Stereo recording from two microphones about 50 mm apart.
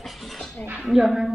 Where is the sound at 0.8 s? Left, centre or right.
Centre.